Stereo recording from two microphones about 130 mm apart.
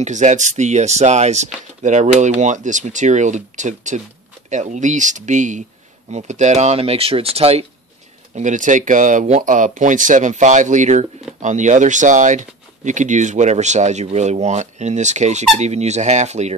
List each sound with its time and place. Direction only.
0.0 s speech: 65° right (ahead or behind); by 7.6 s 50° right (ahead or behind)
8.4 s speech: 70° right (ahead or behind)